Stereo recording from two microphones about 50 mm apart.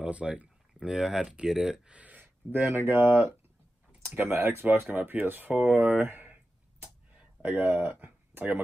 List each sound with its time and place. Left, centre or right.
0.0 s speech: right
0.7 s speech: centre
1.2 s speech: centre
1.9 s a sound: right
2.8 s speech: right
4.1 s speech: right
7.2 s speech: right